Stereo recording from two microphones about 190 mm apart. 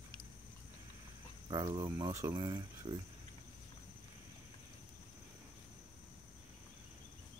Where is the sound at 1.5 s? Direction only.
20° right (ahead or behind).